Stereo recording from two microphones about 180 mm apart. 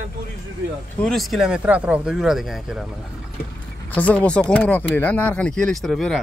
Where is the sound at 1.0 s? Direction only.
Centre (ahead or behind).